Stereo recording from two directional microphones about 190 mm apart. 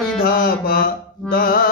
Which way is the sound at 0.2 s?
50° left (ahead or behind).